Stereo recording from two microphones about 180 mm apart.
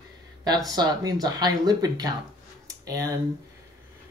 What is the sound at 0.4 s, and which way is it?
Speech, 20° right (ahead or behind).